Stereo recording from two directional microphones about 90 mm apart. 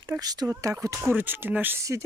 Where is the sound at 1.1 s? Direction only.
20° right (ahead or behind).